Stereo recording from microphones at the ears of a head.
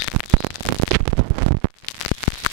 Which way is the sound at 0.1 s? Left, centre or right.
Right.